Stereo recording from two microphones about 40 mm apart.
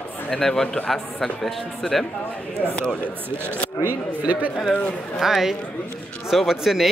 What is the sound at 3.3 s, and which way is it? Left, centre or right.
Speech, right.